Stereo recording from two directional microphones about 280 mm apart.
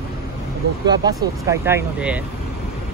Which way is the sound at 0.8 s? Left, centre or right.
Centre.